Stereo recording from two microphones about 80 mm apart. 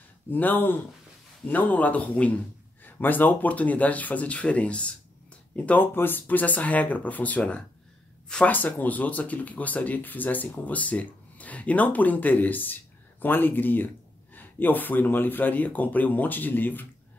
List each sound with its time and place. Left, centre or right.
0.3 s speech: left
5.7 s speech: left
8.5 s speech: left